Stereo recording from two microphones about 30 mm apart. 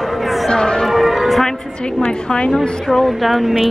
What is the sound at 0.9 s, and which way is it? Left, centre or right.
Music, centre.